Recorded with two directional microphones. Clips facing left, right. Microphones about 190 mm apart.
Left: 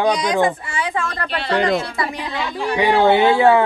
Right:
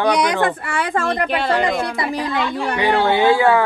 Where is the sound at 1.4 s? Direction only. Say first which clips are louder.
Even; 55° right (ahead or behind).